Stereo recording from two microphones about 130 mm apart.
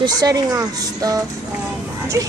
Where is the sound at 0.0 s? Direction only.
30° right (ahead or behind).